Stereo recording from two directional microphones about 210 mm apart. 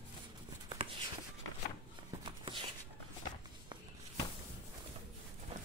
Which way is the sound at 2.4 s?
25° right (ahead or behind).